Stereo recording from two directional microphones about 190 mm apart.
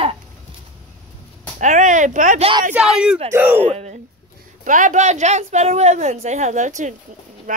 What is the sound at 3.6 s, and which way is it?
A woman's voice, 35° right (ahead or behind).